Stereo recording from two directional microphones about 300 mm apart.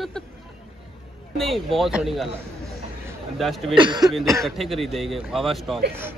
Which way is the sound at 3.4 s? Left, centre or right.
Centre.